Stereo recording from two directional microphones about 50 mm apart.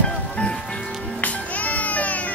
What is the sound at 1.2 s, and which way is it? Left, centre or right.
Music, left.